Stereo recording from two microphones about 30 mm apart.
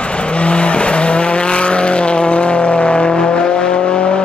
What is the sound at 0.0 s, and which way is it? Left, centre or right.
Vehicle, left.